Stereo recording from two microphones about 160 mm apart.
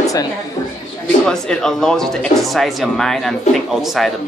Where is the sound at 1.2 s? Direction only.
5° left (ahead or behind).